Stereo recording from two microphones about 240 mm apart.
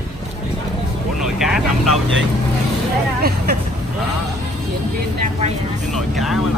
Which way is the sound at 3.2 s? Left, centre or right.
Right.